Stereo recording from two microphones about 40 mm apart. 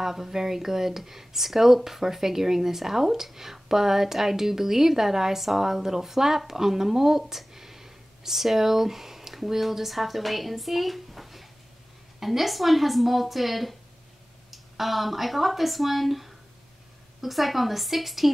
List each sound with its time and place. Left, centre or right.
0.0 s speech: centre